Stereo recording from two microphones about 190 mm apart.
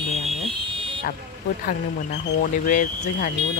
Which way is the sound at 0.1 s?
35° right (ahead or behind).